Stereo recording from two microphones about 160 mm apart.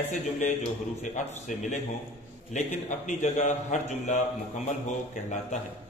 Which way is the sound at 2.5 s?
50° left (ahead or behind).